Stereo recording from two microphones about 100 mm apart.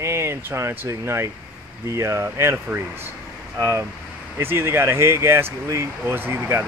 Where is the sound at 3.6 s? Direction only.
25° right (ahead or behind).